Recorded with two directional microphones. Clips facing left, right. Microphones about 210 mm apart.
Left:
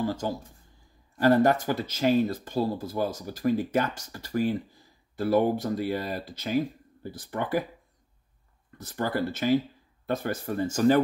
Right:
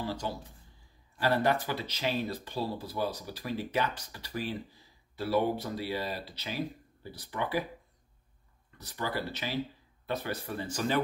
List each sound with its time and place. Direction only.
0.0 s speech: 45° left (ahead or behind)
8.7 s speech: 50° left (ahead or behind)